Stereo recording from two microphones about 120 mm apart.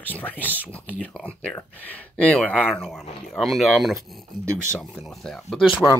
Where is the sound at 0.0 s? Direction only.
15° left (ahead or behind); by 5.9 s centre (ahead or behind).